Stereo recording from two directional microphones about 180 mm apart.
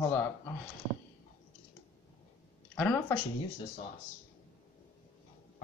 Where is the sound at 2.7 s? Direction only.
10° left (ahead or behind).